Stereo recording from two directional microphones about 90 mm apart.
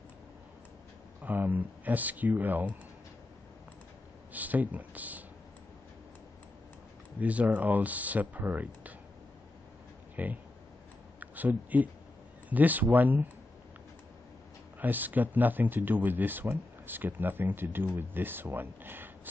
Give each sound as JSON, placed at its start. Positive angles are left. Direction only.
{"t": 1.2, "sound": "speech", "side_deg": -20}
{"t": 4.3, "sound": "speech", "side_deg": -20}
{"t": 7.2, "sound": "speech", "side_deg": -15}
{"t": 10.1, "sound": "speech", "side_deg": -20}
{"t": 14.8, "sound": "speech", "side_deg": -20}